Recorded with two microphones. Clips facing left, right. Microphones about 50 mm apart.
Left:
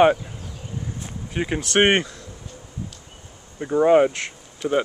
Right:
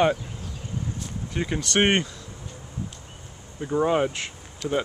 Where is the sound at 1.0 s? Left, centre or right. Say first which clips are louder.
Left 5 dB; centre.